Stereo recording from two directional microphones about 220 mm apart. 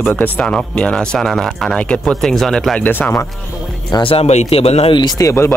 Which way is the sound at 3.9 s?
25° left (ahead or behind).